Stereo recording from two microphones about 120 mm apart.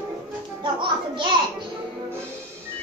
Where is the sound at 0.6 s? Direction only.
40° right (ahead or behind).